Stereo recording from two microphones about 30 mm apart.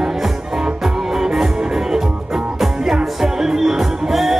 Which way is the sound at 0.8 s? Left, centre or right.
Centre.